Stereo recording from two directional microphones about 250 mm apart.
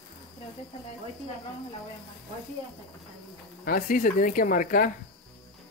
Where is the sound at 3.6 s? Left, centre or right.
Left.